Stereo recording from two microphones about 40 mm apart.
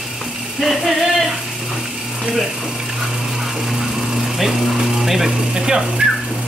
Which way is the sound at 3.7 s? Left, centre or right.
Centre.